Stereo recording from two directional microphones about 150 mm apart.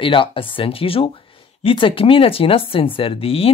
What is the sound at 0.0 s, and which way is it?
Speech, 35° left (ahead or behind).